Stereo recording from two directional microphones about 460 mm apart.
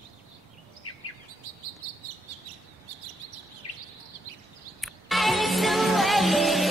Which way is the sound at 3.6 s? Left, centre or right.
Left.